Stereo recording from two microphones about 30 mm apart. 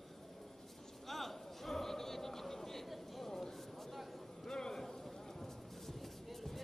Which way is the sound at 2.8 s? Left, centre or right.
Centre.